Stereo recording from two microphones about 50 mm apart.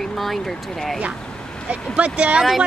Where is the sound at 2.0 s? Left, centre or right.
Right.